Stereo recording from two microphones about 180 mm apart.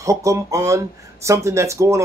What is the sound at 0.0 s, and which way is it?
Speech, 15° right (ahead or behind).